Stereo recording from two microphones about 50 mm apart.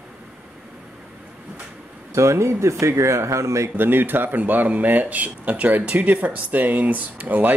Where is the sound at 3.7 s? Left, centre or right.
Right.